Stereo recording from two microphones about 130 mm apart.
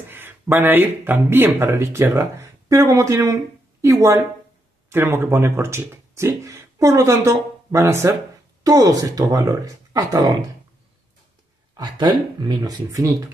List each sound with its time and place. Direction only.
0.1 s speech: 15° right (ahead or behind)
11.7 s speech: 35° right (ahead or behind)